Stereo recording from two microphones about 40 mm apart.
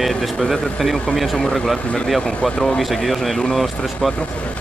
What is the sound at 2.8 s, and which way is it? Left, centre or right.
Speech, centre.